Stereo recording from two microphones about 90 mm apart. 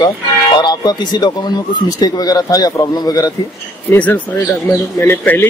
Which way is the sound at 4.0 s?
15° left (ahead or behind).